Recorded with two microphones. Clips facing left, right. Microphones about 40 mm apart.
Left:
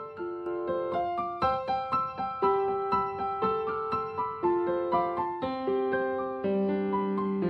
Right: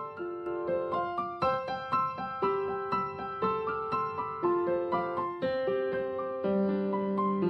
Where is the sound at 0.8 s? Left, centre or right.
Left.